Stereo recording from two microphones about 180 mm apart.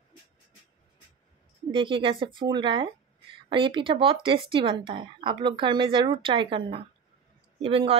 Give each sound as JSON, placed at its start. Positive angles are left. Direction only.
{"t": 1.7, "sound": "a woman's voice", "side_deg": -30}